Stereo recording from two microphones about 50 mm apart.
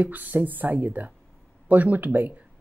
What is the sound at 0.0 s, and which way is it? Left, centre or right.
A woman's voice, right.